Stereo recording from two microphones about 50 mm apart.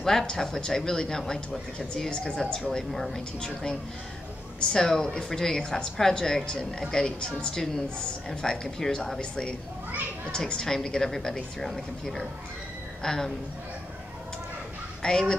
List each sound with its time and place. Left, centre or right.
0.0 s speech: centre
15.0 s speech: centre